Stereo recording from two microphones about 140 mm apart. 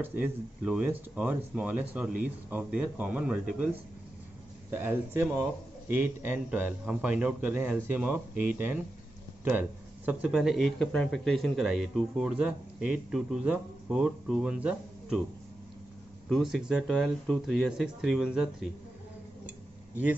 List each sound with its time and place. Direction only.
0.0 s speech: 15° right (ahead or behind)
16.3 s speech: centre (ahead or behind)